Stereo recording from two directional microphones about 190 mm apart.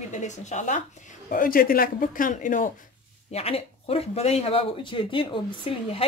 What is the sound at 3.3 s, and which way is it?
Speech, 35° left (ahead or behind).